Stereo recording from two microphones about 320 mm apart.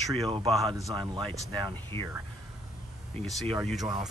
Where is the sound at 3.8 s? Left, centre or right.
Centre.